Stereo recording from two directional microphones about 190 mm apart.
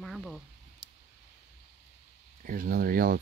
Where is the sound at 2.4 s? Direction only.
50° right (ahead or behind).